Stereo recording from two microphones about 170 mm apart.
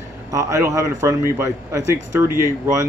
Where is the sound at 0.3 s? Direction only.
20° right (ahead or behind).